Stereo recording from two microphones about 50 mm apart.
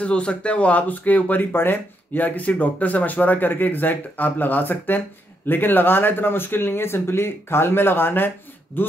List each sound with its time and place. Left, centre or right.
0.0 s speech: left